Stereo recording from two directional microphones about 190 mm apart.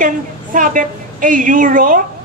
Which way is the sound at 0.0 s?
45° right (ahead or behind).